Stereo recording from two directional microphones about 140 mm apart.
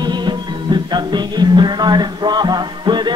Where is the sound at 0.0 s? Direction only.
30° right (ahead or behind).